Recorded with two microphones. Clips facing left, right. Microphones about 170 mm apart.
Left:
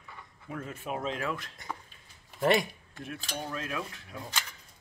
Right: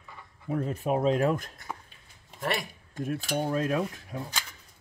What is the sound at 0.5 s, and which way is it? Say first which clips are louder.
Speech: right 9 dB; 35° right (ahead or behind).